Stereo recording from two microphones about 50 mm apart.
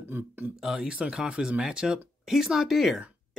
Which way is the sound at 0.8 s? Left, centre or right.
Right.